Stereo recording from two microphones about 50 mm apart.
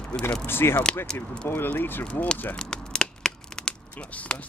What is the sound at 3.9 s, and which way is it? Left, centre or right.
Speech, left.